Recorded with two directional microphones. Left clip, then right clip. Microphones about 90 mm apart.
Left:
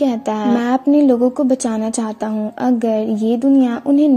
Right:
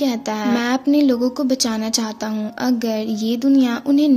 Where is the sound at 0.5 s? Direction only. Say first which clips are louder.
Left 3 dB; 20° left (ahead or behind).